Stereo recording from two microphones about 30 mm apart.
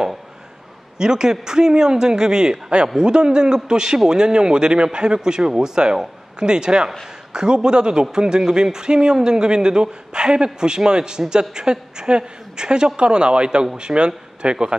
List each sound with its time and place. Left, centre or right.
0.9 s a man's voice: right